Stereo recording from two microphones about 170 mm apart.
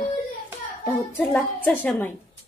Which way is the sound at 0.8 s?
10° left (ahead or behind).